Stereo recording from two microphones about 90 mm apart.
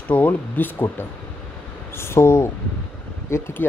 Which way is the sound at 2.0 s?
30° left (ahead or behind).